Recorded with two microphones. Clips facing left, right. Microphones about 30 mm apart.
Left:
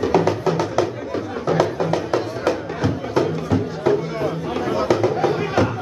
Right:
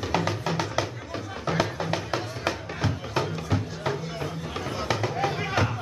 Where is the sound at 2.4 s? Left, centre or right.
Centre.